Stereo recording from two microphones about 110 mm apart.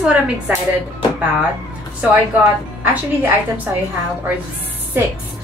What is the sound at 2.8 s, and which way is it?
Speech, 15° right (ahead or behind).